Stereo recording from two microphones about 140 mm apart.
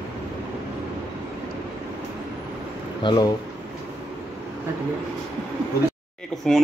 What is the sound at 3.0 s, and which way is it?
Speech, 35° left (ahead or behind).